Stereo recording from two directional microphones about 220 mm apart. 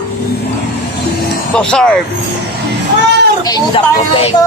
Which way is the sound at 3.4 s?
20° left (ahead or behind).